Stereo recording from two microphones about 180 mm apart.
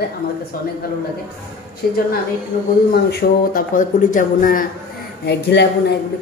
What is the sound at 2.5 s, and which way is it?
Speech, 50° left (ahead or behind).